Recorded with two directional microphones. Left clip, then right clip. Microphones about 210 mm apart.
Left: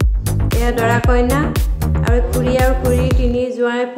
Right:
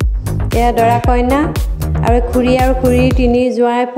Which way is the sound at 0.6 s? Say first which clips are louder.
Right 6 dB; 30° right (ahead or behind).